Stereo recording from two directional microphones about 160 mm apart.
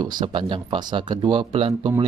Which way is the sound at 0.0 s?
30° right (ahead or behind).